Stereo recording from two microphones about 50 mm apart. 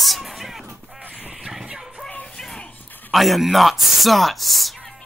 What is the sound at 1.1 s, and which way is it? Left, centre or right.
Vehicle, centre.